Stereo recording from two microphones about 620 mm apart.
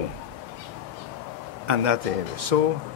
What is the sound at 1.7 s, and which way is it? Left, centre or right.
Speech, right.